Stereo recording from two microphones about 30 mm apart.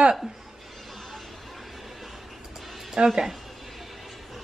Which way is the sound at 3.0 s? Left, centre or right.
Right.